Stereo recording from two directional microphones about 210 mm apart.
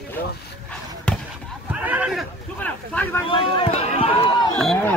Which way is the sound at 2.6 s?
5° left (ahead or behind).